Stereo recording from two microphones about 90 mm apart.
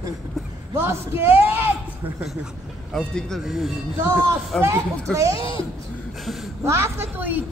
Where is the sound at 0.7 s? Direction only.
25° right (ahead or behind).